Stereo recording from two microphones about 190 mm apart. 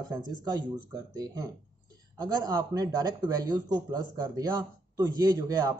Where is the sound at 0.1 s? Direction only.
20° right (ahead or behind).